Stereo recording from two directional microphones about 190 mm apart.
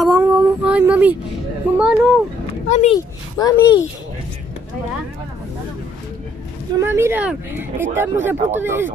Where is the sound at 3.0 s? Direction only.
20° left (ahead or behind).